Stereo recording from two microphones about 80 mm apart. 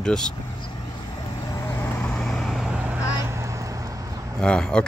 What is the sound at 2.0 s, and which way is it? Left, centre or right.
Vehicle, centre.